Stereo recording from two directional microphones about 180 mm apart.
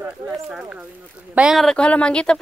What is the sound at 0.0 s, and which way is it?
Speech, 5° right (ahead or behind).